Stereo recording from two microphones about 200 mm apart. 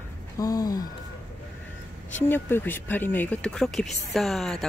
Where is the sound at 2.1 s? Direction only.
10° left (ahead or behind).